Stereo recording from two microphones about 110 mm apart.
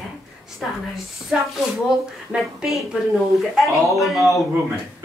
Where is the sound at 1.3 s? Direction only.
10° right (ahead or behind).